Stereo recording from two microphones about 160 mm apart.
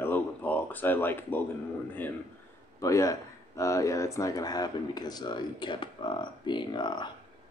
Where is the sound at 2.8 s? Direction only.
20° left (ahead or behind).